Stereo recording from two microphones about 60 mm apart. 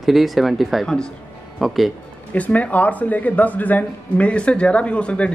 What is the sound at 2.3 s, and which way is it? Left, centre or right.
Speech, left.